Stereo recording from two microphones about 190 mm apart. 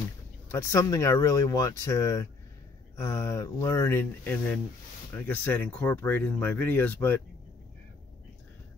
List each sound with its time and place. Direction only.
0.5 s speech: 15° left (ahead or behind)